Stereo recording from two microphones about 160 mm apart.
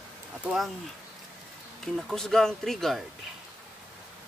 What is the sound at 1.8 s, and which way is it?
Speech, centre (ahead or behind).